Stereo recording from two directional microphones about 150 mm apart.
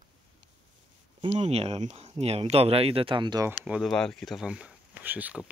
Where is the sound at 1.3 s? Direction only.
45° right (ahead or behind).